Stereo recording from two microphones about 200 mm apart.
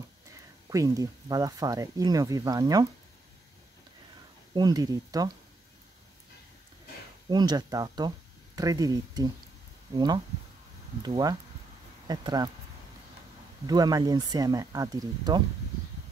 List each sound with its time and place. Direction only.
0.3 s speech: 15° right (ahead or behind)
4.6 s speech: 20° right (ahead or behind)
7.2 s speech: 20° right (ahead or behind)
13.7 s speech: 20° right (ahead or behind)